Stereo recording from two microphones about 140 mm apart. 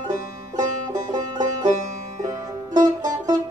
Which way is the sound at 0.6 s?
25° right (ahead or behind).